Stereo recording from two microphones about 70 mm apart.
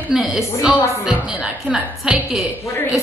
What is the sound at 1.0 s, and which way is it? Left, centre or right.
A woman's voice, centre.